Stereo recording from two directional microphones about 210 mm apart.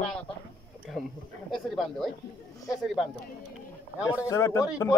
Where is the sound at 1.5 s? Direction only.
Centre (ahead or behind).